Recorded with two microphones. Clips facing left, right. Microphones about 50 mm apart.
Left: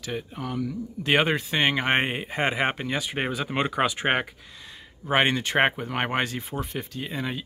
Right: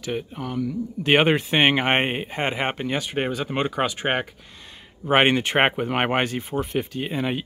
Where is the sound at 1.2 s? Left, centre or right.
Right.